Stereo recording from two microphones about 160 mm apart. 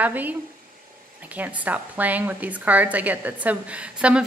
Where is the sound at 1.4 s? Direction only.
10° right (ahead or behind).